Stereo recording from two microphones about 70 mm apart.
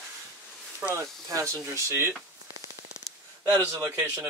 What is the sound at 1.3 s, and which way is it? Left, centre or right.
Speech, right.